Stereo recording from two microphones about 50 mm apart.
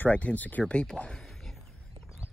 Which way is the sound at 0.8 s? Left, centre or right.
Centre.